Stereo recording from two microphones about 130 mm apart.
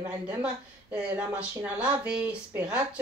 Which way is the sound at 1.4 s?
10° right (ahead or behind).